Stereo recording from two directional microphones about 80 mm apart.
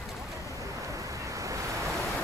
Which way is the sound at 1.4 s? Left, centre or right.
Right.